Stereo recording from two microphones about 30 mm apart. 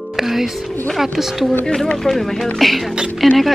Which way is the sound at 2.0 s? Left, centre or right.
Centre.